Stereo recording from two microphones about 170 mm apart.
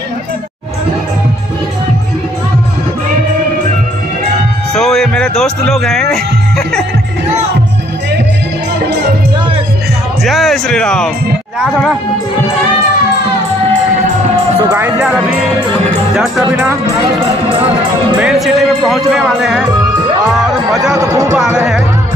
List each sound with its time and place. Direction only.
4.7 s speech: centre (ahead or behind)
10.2 s speech: centre (ahead or behind)
14.7 s speech: 5° right (ahead or behind)
18.2 s speech: centre (ahead or behind)
20.9 s speech: 20° right (ahead or behind)
21.4 s speech: 5° right (ahead or behind)